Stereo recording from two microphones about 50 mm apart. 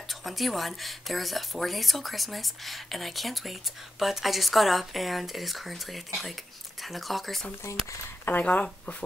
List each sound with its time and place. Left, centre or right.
0.1 s speech: centre
7.7 s speech: left
8.3 s speech: left